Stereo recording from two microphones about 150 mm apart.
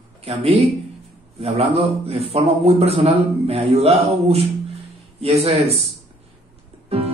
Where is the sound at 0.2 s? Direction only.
40° right (ahead or behind).